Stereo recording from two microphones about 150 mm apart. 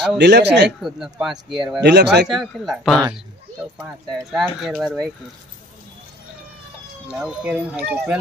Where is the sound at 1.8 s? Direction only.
90° right.